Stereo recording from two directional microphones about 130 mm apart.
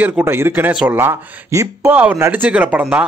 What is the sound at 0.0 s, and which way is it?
Speech, 15° right (ahead or behind).